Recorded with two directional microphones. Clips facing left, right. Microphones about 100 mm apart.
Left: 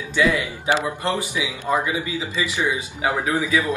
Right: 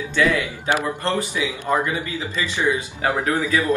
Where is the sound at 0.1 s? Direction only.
10° left (ahead or behind).